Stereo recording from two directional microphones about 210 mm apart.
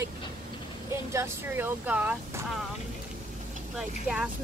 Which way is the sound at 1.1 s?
10° right (ahead or behind).